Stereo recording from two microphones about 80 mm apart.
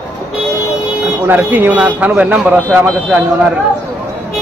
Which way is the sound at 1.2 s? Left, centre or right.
Right.